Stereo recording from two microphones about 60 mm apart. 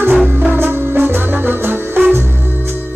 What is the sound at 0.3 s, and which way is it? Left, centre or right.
Music, right.